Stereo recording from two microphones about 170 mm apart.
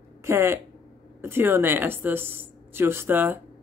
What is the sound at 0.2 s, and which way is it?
Speech, 15° right (ahead or behind).